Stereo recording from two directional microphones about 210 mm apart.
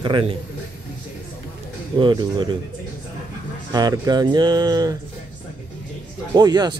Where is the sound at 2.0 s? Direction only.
20° right (ahead or behind).